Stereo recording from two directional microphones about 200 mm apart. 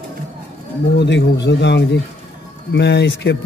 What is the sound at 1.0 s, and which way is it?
Speech, 60° left (ahead or behind).